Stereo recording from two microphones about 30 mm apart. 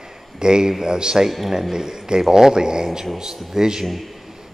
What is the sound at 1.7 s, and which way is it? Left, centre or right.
A man's voice, centre.